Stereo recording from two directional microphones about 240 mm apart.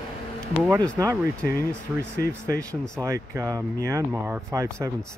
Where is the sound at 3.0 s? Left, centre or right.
Centre.